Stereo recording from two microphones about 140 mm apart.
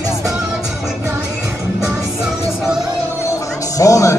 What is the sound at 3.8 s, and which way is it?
Speech, 20° left (ahead or behind).